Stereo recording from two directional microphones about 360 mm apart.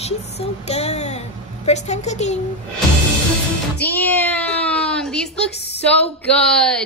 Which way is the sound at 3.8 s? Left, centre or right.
Centre.